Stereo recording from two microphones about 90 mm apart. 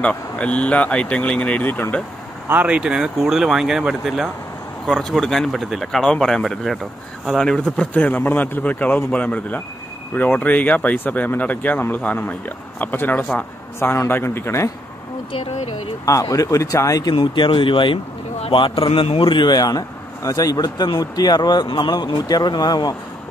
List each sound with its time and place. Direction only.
0.0 s speech: 15° left (ahead or behind)
2.4 s speech: 20° right (ahead or behind)
2.8 s speech: 10° right (ahead or behind); by 13.5 s 15° left (ahead or behind)
13.7 s speech: 30° left (ahead or behind)
16.1 s speech: 35° left (ahead or behind)
17.1 s a man's voice: 65° left (ahead or behind)
18.5 s a man's voice: 80° left; by 22.9 s 50° left (ahead or behind)